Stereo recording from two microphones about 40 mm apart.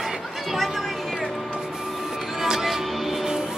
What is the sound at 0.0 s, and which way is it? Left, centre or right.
Music, centre.